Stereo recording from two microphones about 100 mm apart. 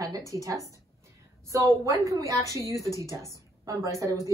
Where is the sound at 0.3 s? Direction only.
30° right (ahead or behind).